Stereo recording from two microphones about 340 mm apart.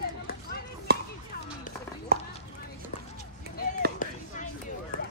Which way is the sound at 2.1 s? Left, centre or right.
Right.